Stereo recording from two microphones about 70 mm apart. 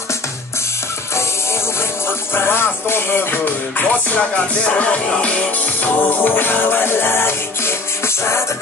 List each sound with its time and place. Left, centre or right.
1.8 s music: left